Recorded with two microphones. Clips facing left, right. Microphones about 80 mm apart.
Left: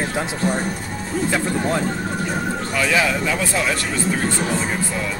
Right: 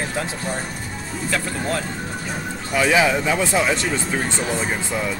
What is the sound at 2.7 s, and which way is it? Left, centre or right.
Speech, centre.